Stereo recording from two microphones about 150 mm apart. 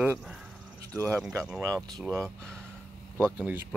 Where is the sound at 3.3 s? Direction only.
10° right (ahead or behind).